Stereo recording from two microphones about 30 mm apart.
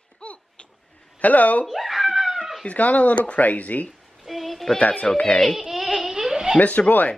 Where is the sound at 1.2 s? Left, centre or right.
Left.